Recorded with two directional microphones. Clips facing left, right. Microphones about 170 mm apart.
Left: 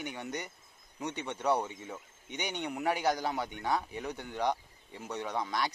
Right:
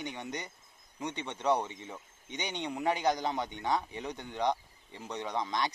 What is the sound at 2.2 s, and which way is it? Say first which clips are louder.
Speech: even; 15° right (ahead or behind).